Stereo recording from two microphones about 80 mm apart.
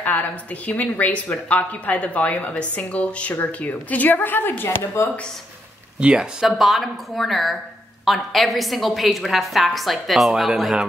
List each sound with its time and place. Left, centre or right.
0.7 s a woman's voice: left
5.9 s speech: centre
6.4 s a woman's voice: centre